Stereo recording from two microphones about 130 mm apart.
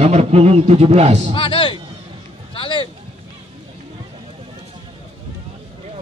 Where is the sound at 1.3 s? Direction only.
40° left (ahead or behind).